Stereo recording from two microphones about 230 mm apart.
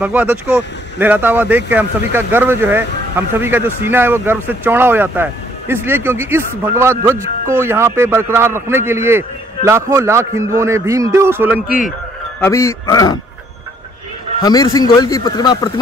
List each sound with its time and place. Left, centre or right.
0.0 s speech: centre
11.6 s speech: left
12.4 s a man's voice: centre
14.4 s a man's voice: centre